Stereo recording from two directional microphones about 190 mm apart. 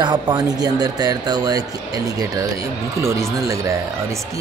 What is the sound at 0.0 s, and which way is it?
Speech, 20° right (ahead or behind).